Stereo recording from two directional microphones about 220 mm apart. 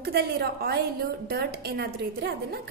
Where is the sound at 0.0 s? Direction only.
45° right (ahead or behind).